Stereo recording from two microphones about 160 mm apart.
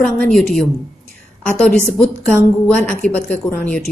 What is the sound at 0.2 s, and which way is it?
A woman's voice, 5° left (ahead or behind).